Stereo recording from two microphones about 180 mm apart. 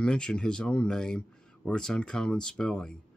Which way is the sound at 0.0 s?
5° left (ahead or behind).